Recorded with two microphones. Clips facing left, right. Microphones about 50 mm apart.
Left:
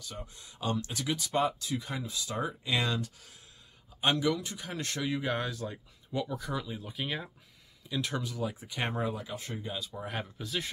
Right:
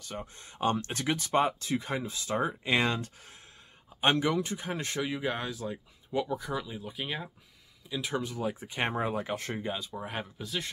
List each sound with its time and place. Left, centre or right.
0.0 s speech: right; by 7.2 s centre
8.2 s speech: right
9.1 s speech: right
9.6 s speech: right
9.9 s speech: centre